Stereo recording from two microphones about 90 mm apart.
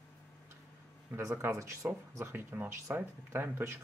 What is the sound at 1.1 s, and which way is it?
Speech, 30° right (ahead or behind).